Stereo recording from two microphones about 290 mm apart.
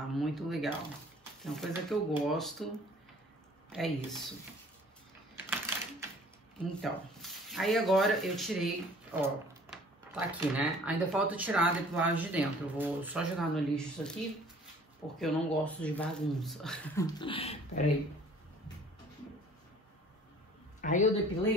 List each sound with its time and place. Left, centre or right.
0.1 s speech: centre
3.7 s speech: centre
5.4 s typing: centre
6.6 s speech: centre
15.1 s speech: centre; by 17.8 s left
20.8 s speech: left